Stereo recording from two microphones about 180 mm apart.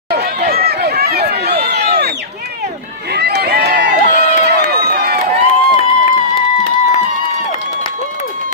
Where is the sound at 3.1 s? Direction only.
65° right (ahead or behind).